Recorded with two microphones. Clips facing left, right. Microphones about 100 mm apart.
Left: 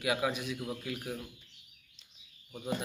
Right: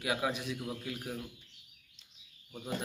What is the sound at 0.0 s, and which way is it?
Speech, 30° right (ahead or behind).